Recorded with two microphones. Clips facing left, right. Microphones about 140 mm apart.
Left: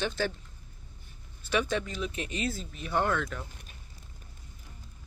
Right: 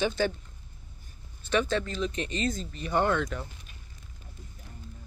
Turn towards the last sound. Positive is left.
turn(degrees=0)  # may be behind; listen again after turning